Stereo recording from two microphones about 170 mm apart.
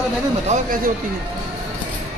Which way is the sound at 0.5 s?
55° right (ahead or behind).